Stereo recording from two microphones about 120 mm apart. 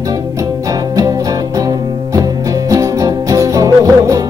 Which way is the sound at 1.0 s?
30° right (ahead or behind).